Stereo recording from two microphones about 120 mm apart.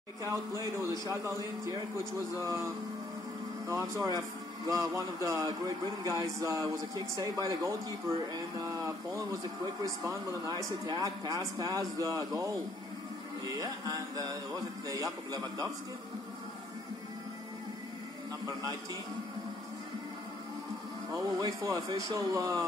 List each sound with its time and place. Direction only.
0.3 s speech: 25° right (ahead or behind)
3.9 s speech: 30° right (ahead or behind)
13.6 s speech: 30° right (ahead or behind)
21.1 s speech: 35° right (ahead or behind)